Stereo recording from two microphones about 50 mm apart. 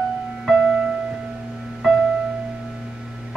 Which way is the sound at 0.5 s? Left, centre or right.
Centre.